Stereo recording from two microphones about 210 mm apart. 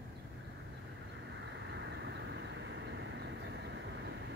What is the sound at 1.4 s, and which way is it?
Vehicle, 55° right (ahead or behind).